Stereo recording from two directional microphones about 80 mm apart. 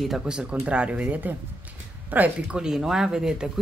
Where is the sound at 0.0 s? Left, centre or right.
Centre.